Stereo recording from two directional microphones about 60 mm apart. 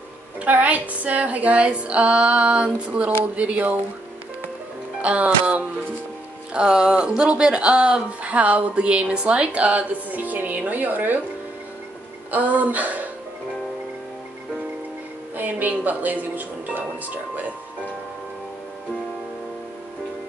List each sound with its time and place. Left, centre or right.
0.4 s speech: right
5.0 s speech: right
12.3 s speech: right
15.3 s speech: right